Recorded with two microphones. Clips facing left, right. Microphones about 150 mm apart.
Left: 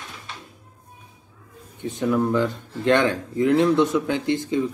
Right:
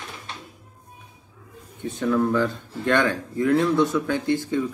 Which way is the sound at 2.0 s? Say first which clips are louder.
Even; 15° left (ahead or behind).